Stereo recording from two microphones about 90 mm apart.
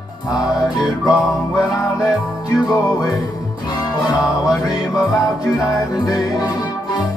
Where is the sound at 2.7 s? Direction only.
40° left (ahead or behind).